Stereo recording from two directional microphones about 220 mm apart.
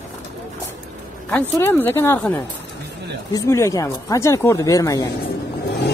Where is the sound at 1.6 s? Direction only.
10° left (ahead or behind).